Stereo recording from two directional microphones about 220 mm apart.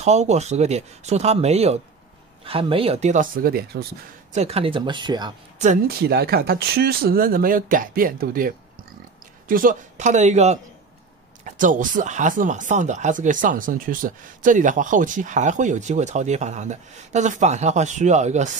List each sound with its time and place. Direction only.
0.0 s speech: 30° right (ahead or behind)
4.3 s speech: 30° right (ahead or behind)
5.6 s speech: 40° right (ahead or behind)